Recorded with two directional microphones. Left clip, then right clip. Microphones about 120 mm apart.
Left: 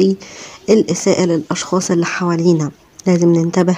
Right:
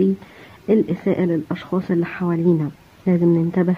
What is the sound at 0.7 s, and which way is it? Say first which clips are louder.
Speech: left 6 dB; 30° left (ahead or behind).